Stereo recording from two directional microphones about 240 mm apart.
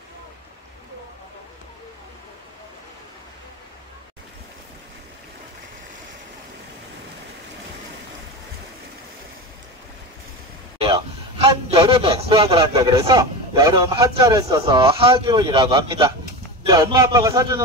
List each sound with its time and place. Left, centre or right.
10.8 s a man's voice: right